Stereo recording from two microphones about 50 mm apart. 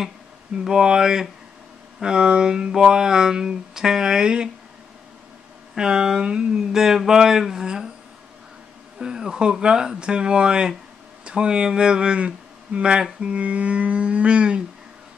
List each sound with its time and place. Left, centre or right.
0.7 s speech: centre
5.8 s speech: centre
8.9 s speech: centre
13.4 s a sound: right